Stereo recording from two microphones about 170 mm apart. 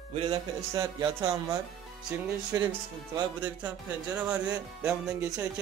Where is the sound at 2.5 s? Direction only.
20° right (ahead or behind).